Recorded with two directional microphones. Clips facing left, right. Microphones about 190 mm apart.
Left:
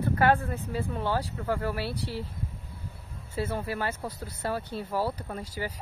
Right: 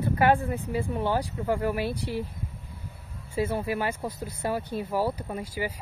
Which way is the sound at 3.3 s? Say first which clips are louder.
Right 4 dB; 10° right (ahead or behind).